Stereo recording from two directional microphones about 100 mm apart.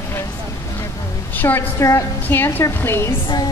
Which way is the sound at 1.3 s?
20° left (ahead or behind).